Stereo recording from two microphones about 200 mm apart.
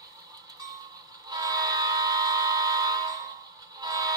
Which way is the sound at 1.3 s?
20° right (ahead or behind).